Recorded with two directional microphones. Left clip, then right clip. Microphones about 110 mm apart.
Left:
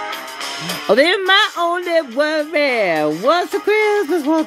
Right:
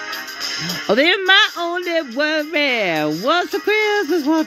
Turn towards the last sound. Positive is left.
turn(degrees=-15)  # may be behind; listen again after turning